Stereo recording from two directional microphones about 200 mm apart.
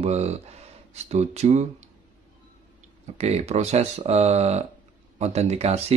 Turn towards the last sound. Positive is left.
turn(degrees=-30)  # may be behind; listen again after turning